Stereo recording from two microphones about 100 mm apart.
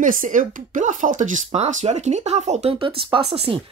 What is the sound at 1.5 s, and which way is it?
Speech, 90° right.